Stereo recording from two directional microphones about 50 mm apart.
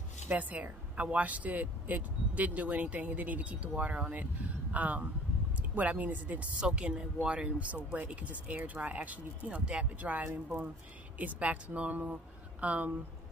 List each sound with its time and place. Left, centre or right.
0.3 s speech: right
6.6 s speech: centre
9.7 s speech: centre
11.1 s speech: right